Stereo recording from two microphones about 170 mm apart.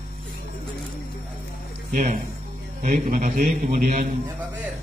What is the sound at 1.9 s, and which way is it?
A man's voice, 50° right (ahead or behind).